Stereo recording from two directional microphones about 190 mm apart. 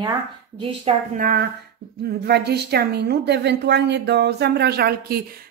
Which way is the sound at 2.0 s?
55° right (ahead or behind).